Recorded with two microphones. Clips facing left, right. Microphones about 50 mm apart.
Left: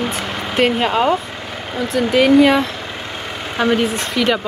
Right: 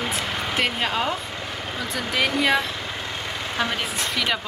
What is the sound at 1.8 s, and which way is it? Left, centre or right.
Speech, centre.